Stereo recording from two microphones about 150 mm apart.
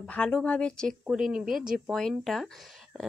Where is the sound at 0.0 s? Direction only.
10° left (ahead or behind).